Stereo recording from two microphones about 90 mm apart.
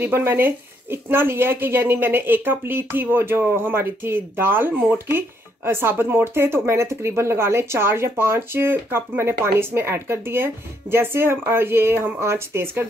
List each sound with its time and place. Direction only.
0.0 s speech: 25° right (ahead or behind)